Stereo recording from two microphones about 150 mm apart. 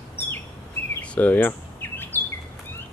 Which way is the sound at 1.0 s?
10° left (ahead or behind).